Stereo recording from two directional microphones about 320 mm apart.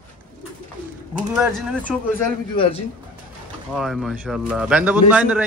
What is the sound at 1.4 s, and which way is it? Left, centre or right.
Speech, centre.